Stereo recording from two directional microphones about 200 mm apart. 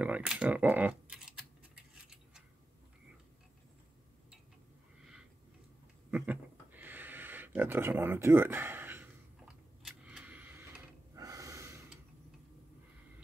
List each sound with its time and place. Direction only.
0.0 s speech: 5° right (ahead or behind)
6.0 s a sound: 10° right (ahead or behind)
11.1 s snort: 15° right (ahead or behind)